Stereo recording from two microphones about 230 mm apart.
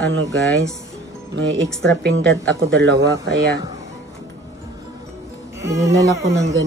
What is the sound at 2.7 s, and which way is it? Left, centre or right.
Speech, right.